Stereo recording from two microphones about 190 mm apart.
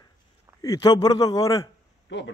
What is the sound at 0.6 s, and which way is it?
A man's voice, 20° left (ahead or behind).